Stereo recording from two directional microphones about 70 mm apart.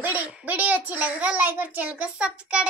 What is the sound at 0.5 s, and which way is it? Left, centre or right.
A child's voice, right.